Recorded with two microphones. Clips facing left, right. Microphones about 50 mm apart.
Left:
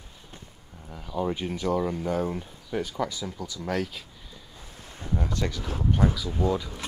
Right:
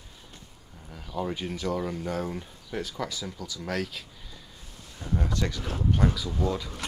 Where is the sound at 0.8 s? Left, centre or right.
Centre.